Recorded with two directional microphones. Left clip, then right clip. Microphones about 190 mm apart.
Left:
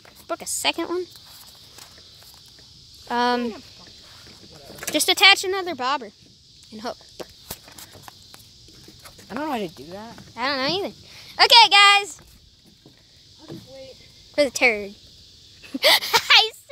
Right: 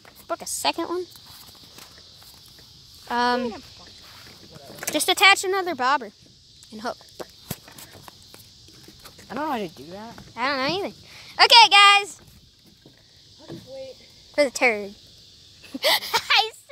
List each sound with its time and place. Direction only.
0.5 s speech: 5° left (ahead or behind)
3.1 s speech: 15° left (ahead or behind)
4.9 s speech: 15° left (ahead or behind)
5.2 s speech: 5° left (ahead or behind)
5.5 s speech: 10° right (ahead or behind)
9.3 s speech: 30° left (ahead or behind)
9.9 s speech: centre (ahead or behind)
14.3 s speech: 10° left (ahead or behind)
15.6 s a sound: 25° left (ahead or behind)